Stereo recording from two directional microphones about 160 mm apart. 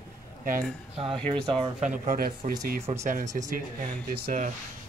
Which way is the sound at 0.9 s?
35° right (ahead or behind).